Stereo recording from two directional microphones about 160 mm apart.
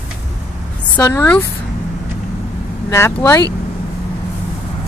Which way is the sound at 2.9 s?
20° left (ahead or behind).